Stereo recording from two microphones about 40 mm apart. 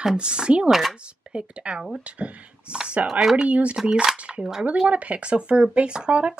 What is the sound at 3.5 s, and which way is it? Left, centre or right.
Speech, right.